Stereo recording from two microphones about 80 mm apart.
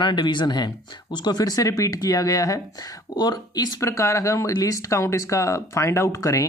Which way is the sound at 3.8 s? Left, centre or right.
Left.